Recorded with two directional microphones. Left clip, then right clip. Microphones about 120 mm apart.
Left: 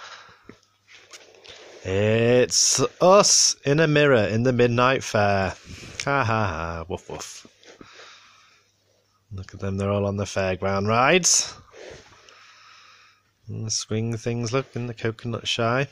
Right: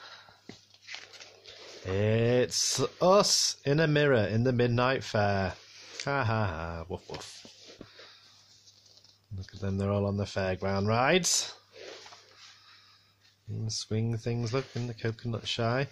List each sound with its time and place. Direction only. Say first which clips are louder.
0.0 s biting: left 7 dB; 35° left (ahead or behind)
1.1 s speech: left 5 dB; 35° left (ahead or behind)
9.5 s speech: left 6 dB; 25° left (ahead or behind)
13.7 s speech: left 7 dB; 30° left (ahead or behind)